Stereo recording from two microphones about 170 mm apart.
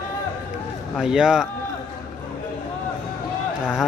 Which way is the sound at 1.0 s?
5° right (ahead or behind).